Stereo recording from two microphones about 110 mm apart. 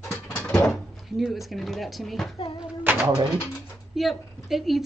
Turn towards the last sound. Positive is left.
turn(degrees=0)  # may be behind; listen again after turning